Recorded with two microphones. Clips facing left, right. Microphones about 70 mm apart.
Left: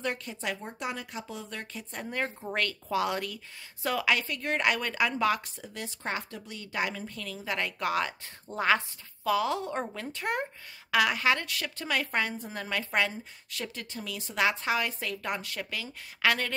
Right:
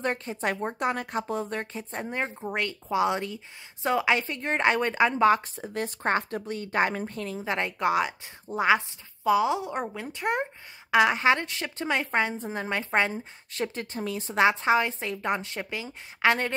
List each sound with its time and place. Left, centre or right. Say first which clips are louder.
0.0 s a woman's voice: right 5 dB; right